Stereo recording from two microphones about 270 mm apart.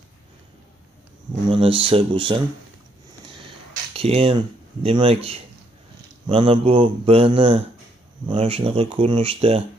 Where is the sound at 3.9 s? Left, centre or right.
Right.